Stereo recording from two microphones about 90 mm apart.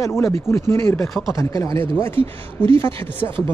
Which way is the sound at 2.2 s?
80° right.